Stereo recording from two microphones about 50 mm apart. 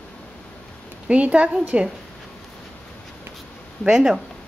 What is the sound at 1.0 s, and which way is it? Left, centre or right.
Speech, right.